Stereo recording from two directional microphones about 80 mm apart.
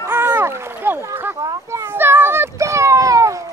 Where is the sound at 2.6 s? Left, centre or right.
Right.